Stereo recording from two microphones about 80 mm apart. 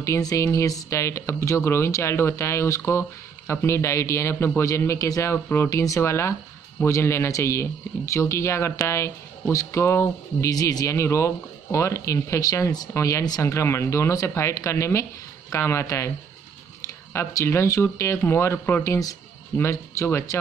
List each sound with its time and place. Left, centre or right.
0.0 s speech: left
5.3 s speech: left
10.5 s speech: left
11.0 s speech: left
17.1 s speech: left
18.9 s speech: left
19.6 s speech: left